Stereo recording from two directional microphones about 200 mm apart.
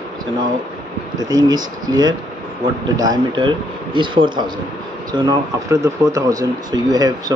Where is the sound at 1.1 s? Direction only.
20° right (ahead or behind).